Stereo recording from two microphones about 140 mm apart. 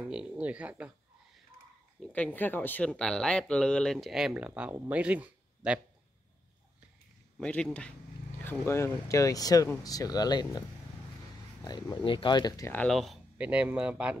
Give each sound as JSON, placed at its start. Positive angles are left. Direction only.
{"t": 0.0, "sound": "speech", "side_deg": -10}
{"t": 2.1, "sound": "speech", "side_deg": 10}
{"t": 7.3, "sound": "speech", "side_deg": 5}
{"t": 8.5, "sound": "speech", "side_deg": 20}
{"t": 11.6, "sound": "speech", "side_deg": 30}
{"t": 12.7, "sound": "speech", "side_deg": 5}
{"t": 13.4, "sound": "speech", "side_deg": -10}